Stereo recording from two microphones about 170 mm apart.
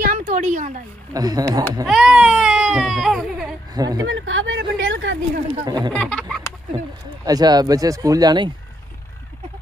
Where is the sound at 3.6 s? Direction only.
20° right (ahead or behind).